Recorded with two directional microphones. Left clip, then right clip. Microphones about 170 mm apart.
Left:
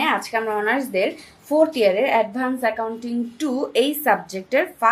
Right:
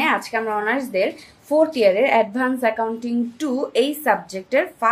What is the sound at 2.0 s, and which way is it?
Speech, 20° right (ahead or behind).